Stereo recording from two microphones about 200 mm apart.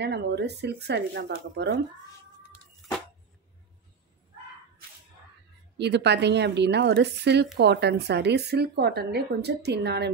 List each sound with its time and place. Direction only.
0.0 s a woman's voice: 55° right (ahead or behind)
5.8 s a woman's voice: 60° right (ahead or behind)